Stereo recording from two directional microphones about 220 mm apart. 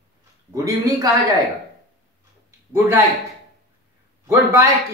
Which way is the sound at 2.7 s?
10° right (ahead or behind).